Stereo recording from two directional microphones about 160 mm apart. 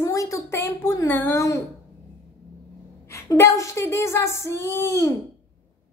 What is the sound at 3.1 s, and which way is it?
A woman's voice, 20° left (ahead or behind).